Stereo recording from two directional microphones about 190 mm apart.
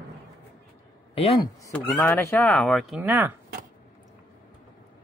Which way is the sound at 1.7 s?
10° left (ahead or behind).